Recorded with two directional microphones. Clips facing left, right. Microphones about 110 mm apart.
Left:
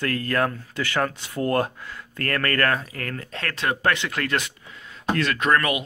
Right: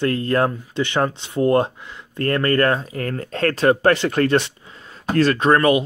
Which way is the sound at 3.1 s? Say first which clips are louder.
Right 10 dB; 40° right (ahead or behind).